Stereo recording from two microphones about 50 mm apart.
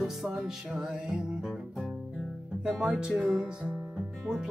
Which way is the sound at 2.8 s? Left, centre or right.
Right.